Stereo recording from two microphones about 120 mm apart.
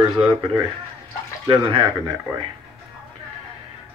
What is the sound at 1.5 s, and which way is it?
Speech, 45° right (ahead or behind).